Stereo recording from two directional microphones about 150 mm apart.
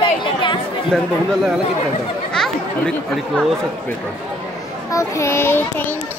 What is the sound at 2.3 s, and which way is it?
Chatter, 5° left (ahead or behind).